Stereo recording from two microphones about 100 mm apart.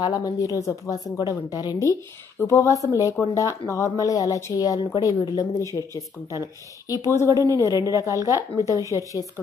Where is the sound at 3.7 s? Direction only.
35° left (ahead or behind).